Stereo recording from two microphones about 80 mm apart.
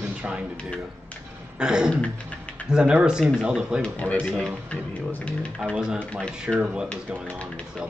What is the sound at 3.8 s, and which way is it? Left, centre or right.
Speech, centre.